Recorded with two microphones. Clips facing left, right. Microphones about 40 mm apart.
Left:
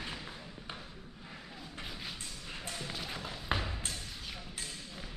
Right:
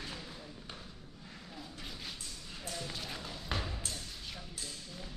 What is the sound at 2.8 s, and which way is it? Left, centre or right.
Music, centre.